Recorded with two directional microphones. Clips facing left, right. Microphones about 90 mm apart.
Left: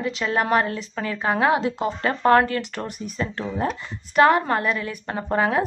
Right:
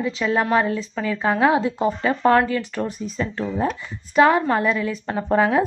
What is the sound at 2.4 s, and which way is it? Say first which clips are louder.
Speech: right 3 dB; 65° left (ahead or behind).